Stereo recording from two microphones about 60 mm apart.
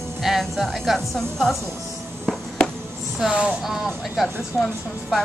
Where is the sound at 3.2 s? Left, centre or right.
Centre.